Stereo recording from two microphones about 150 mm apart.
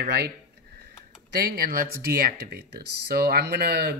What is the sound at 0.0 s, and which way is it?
Speech, 90° right.